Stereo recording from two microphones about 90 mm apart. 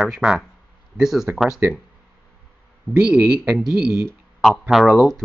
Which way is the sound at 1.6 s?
25° right (ahead or behind).